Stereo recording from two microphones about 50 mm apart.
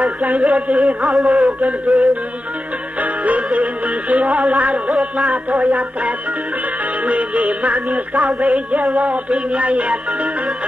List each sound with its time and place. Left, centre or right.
0.0 s music: right